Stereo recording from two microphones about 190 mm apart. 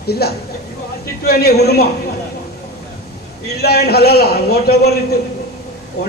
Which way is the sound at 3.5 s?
55° left (ahead or behind).